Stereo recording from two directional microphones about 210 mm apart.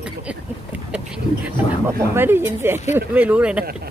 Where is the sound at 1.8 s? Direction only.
10° right (ahead or behind).